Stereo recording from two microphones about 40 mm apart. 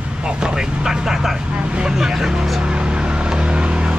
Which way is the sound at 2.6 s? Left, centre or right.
Right.